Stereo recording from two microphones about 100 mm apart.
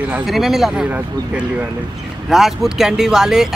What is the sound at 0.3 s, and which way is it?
Speech, 5° right (ahead or behind).